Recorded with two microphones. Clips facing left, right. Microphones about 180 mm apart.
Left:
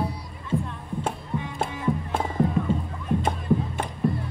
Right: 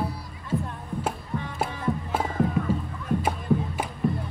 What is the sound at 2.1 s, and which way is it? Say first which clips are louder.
Music: even; 5° right (ahead or behind).